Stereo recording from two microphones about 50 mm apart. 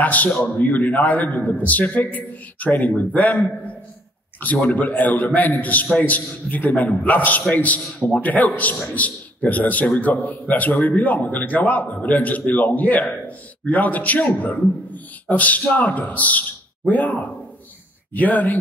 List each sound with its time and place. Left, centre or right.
0.0 s a man's voice: left